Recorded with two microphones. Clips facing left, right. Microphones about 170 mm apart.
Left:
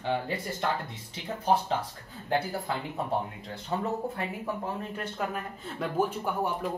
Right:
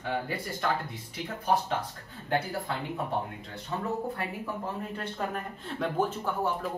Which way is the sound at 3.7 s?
25° left (ahead or behind).